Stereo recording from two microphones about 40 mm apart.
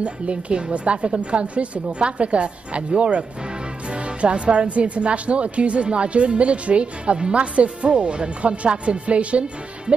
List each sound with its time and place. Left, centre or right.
0.0 s speech: right